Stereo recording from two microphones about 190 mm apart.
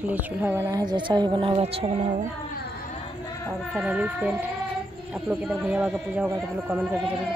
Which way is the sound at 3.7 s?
5° right (ahead or behind).